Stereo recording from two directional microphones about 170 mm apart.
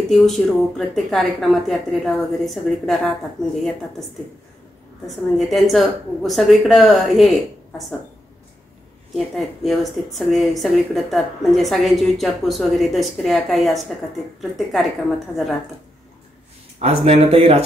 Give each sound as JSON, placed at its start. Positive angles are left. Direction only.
{"t": 0.1, "sound": "speech", "side_deg": 0}
{"t": 5.0, "sound": "speech", "side_deg": 0}
{"t": 9.1, "sound": "speech", "side_deg": 0}
{"t": 16.8, "sound": "speech", "side_deg": -40}